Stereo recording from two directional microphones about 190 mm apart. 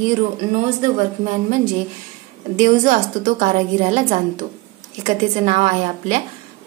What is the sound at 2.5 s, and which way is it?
A woman's voice, 40° right (ahead or behind).